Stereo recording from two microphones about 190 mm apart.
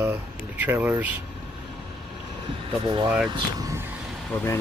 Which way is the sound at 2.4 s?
25° right (ahead or behind).